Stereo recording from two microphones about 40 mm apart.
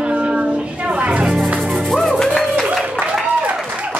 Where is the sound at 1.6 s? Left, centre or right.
Centre.